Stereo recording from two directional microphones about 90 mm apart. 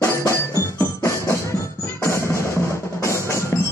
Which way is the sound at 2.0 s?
30° left (ahead or behind).